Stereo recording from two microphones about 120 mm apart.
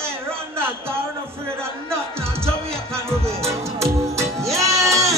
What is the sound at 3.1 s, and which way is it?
Music, 20° right (ahead or behind).